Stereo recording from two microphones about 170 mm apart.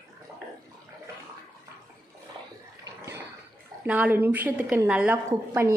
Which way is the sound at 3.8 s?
10° right (ahead or behind).